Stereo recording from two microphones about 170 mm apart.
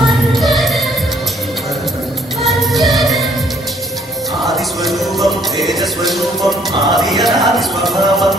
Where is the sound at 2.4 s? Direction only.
Centre (ahead or behind).